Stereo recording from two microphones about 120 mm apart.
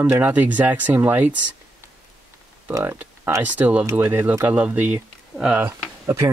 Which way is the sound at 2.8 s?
20° right (ahead or behind).